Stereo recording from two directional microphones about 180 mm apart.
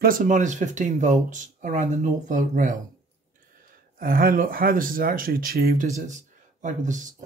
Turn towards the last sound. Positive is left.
turn(degrees=-45)  # may be behind; listen again after turning